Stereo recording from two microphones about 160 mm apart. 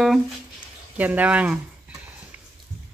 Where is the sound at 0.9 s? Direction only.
10° right (ahead or behind).